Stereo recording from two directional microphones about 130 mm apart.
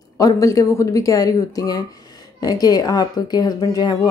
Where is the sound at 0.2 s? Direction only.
25° left (ahead or behind).